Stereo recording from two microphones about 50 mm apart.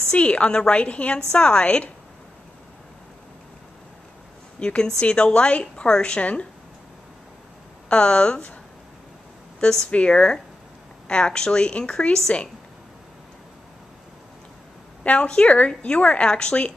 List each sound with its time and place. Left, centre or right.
0.1 s a woman's voice: left
4.6 s a woman's voice: centre
7.9 s a woman's voice: left
9.6 s a woman's voice: centre
15.0 s a woman's voice: left